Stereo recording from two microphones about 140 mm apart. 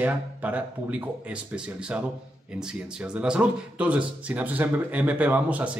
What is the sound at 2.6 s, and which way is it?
Speech, 5° right (ahead or behind).